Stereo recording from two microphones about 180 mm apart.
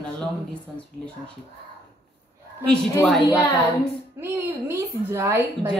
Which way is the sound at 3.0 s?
Centre (ahead or behind).